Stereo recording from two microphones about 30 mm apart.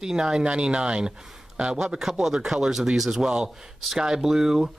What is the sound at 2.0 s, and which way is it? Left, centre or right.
Speech, centre.